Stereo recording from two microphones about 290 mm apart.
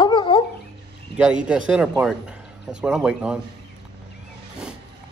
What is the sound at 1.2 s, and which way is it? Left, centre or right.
Speech, centre.